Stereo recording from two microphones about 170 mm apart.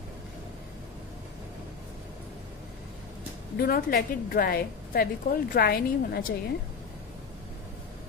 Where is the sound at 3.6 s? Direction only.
60° left (ahead or behind).